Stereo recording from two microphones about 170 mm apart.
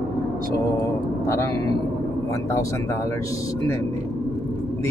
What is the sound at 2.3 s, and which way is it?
Speech, 20° left (ahead or behind).